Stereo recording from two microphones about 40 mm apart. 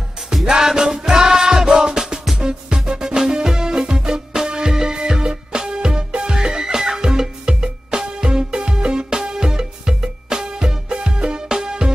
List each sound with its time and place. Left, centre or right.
0.5 s music: centre